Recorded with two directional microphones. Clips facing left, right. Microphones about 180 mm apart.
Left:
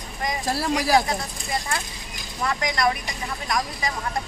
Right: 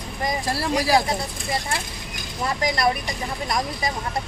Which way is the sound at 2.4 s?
30° right (ahead or behind).